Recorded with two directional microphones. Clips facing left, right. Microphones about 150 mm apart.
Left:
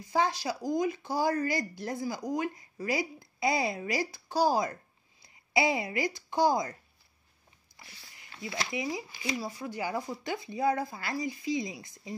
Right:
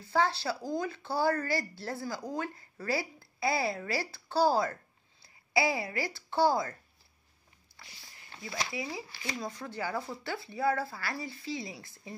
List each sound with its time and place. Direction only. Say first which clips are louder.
0.0 s speech: even; 15° left (ahead or behind)
7.7 s a sound: left 1 dB; 15° left (ahead or behind)
8.7 s speech: left 4 dB; 15° left (ahead or behind)